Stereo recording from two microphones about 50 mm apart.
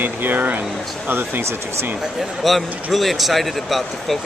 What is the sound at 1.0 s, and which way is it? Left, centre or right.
Speech, right.